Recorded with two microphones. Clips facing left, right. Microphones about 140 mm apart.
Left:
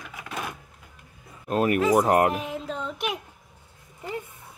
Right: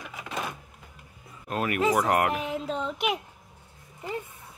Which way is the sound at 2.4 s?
Centre (ahead or behind).